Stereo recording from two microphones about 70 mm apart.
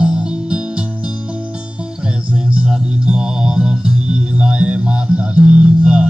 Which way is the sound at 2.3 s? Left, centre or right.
Centre.